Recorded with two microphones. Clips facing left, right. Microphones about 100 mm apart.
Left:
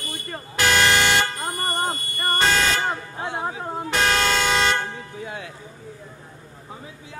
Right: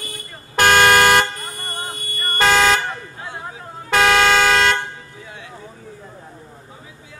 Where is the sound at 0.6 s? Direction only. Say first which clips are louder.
Right 6 dB; 55° right (ahead or behind).